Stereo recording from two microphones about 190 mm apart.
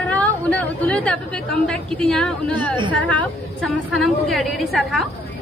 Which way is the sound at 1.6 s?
5° left (ahead or behind).